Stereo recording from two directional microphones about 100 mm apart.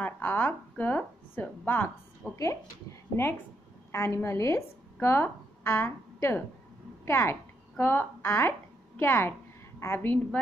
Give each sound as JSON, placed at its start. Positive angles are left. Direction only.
{"t": 0.0, "sound": "a woman's voice", "side_deg": 20}
{"t": 2.3, "sound": "a woman's voice", "side_deg": 30}